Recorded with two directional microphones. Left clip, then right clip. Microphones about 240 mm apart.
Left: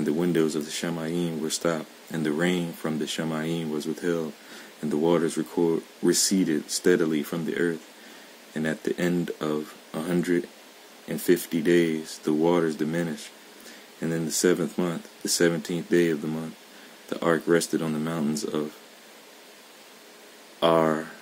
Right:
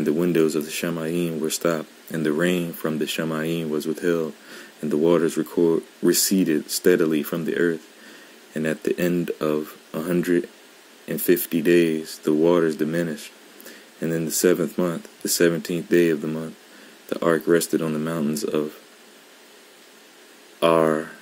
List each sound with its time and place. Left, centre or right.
0.0 s speech: centre
20.6 s speech: centre